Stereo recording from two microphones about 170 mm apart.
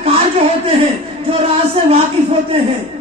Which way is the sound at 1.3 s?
35° right (ahead or behind).